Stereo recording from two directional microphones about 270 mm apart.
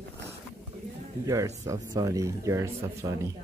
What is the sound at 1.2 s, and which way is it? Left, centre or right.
Speech, centre.